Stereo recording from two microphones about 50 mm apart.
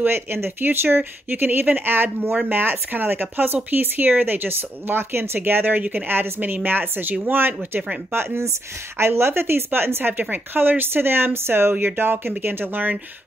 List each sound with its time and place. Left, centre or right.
0.0 s speech: right
6.0 s speech: right